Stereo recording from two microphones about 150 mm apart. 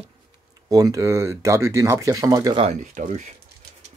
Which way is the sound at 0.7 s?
25° right (ahead or behind).